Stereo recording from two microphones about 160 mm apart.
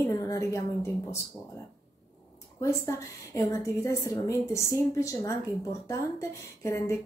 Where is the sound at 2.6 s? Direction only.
20° left (ahead or behind).